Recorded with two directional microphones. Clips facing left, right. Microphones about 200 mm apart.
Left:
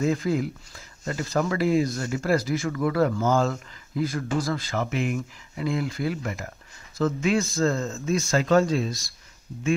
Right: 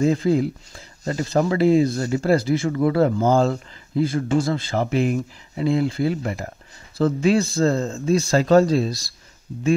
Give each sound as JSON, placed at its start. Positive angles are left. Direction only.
{"t": 0.0, "sound": "speech", "side_deg": -30}